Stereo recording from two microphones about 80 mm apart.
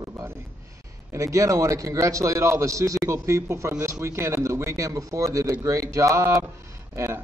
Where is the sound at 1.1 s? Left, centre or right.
Right.